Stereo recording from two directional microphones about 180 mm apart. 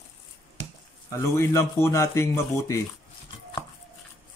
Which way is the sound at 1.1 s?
15° left (ahead or behind).